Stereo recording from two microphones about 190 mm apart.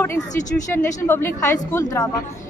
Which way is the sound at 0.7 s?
10° left (ahead or behind).